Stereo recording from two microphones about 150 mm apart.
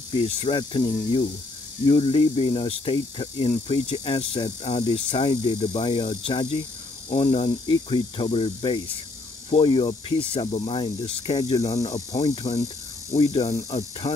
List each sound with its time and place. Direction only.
0.1 s speech: 35° left (ahead or behind)
11.6 s speech: 45° left (ahead or behind)
12.4 s hum: 25° left (ahead or behind)
13.7 s speech: 40° left (ahead or behind)